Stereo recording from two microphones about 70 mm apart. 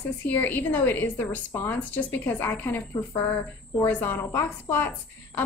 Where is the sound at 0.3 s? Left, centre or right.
Left.